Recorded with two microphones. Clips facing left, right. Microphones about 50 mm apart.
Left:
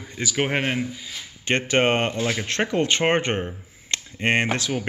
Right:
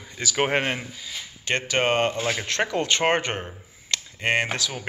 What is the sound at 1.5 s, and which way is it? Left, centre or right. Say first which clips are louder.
Speech: left 3 dB; left.